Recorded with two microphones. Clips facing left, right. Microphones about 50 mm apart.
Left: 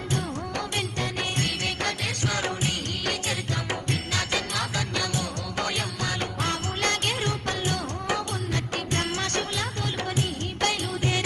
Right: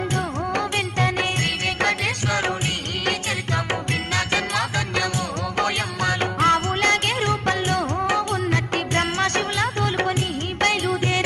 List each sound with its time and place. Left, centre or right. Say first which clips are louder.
0.1 s music: right 6 dB; right